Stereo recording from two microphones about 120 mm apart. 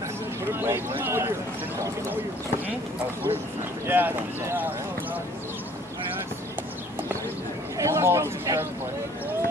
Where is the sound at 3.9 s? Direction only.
15° right (ahead or behind).